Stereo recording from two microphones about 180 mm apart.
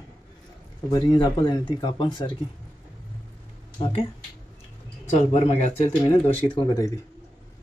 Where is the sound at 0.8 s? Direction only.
25° left (ahead or behind).